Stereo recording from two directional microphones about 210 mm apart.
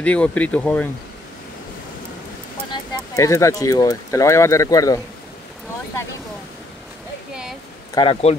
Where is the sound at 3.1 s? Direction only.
15° left (ahead or behind).